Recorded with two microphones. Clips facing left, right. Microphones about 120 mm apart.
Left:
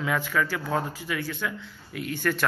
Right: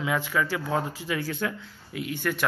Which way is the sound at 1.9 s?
15° right (ahead or behind).